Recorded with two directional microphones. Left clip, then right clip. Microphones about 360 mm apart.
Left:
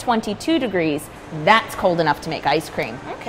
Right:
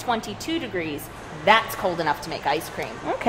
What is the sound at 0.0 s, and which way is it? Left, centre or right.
Speech, left.